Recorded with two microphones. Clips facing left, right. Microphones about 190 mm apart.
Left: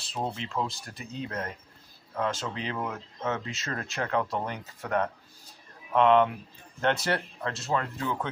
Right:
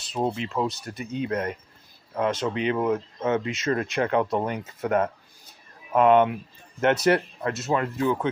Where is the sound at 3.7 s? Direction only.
20° right (ahead or behind).